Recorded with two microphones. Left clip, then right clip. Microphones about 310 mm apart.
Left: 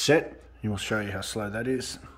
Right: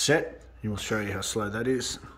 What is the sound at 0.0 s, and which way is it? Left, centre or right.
Speech, centre.